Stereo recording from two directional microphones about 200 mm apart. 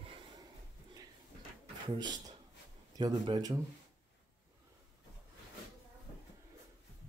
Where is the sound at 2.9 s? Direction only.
20° right (ahead or behind).